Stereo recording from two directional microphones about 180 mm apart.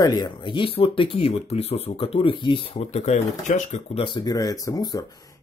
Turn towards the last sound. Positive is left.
turn(degrees=20)  # may be behind; listen again after turning